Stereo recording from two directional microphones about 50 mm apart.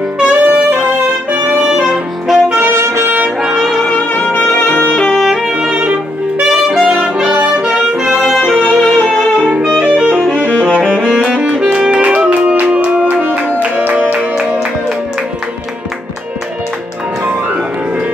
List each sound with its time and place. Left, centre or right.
0.2 s saxophone: right
1.3 s music: right
1.7 s music: centre
2.7 s music: right
4.1 s music: left
4.7 s music: left
5.3 s music: centre
6.5 s saxophone: centre
7.6 s music: centre
8.3 s violin: centre
8.7 s music: centre
9.8 s music: centre